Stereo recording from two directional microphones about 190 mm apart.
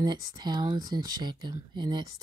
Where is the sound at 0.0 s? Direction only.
20° right (ahead or behind).